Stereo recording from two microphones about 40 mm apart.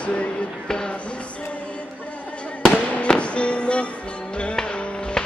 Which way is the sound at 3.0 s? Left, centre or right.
Left.